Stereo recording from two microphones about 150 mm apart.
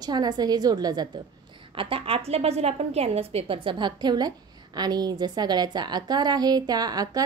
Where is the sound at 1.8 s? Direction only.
40° right (ahead or behind).